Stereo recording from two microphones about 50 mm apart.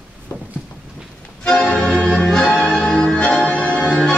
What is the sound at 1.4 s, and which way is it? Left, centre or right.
Music, centre.